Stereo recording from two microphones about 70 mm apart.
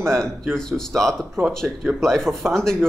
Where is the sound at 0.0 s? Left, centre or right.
Centre.